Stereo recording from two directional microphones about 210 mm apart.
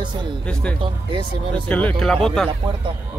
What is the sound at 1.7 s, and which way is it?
Speech, 5° left (ahead or behind).